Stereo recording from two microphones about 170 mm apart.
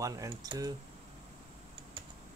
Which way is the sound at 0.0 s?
20° right (ahead or behind).